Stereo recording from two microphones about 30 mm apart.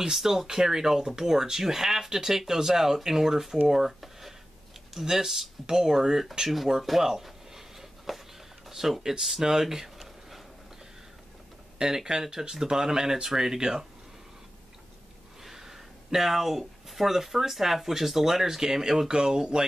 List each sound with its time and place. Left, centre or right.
0.1 s speech: centre
3.7 s a sound: centre
5.0 s speech: centre
6.8 s a sound: centre
8.6 s speech: centre
11.8 s speech: centre
15.4 s speech: centre